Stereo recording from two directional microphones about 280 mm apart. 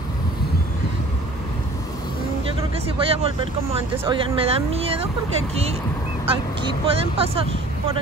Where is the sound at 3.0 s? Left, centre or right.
Centre.